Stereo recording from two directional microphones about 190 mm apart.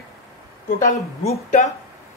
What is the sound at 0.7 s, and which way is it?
Speech, 40° left (ahead or behind).